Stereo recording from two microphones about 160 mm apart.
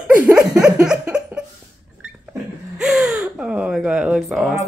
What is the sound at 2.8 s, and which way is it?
Gasp, 5° right (ahead or behind).